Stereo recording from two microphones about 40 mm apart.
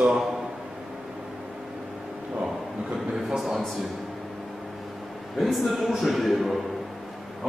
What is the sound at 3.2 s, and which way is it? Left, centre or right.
Speech, centre.